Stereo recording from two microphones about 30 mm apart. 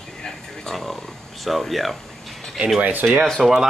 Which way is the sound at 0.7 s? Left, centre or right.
Centre.